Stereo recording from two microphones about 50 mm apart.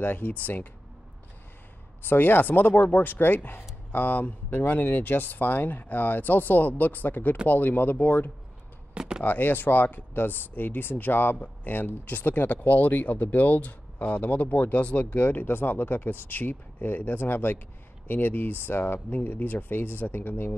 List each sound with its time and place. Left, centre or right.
0.0 s speech: left
2.0 s speech: left
8.9 s a sound: centre
9.2 s speech: left